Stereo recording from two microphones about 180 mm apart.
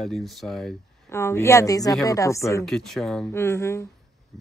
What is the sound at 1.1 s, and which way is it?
Speech, 15° left (ahead or behind).